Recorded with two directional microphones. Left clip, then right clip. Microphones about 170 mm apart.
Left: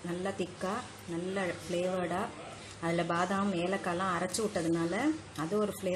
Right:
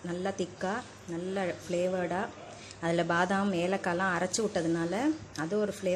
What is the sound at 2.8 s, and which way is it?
A woman's voice, 15° right (ahead or behind).